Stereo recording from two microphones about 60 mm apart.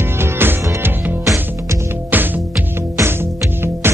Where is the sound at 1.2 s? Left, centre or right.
Right.